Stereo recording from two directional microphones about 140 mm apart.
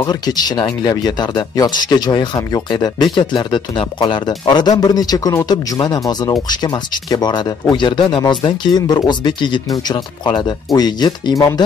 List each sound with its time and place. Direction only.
0.0 s a man's voice: 30° left (ahead or behind)